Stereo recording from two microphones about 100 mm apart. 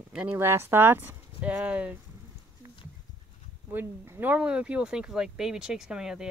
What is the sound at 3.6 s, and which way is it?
Speech, 25° right (ahead or behind).